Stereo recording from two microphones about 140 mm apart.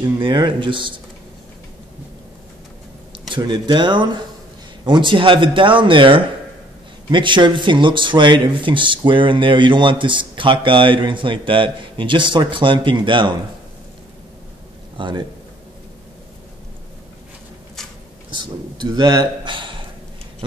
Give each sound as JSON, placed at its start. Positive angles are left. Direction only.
{"t": 0.2, "sound": "a man's voice", "side_deg": -35}
{"t": 3.3, "sound": "a man's voice", "side_deg": -35}
{"t": 15.0, "sound": "a man's voice", "side_deg": -35}
{"t": 18.3, "sound": "speech", "side_deg": -35}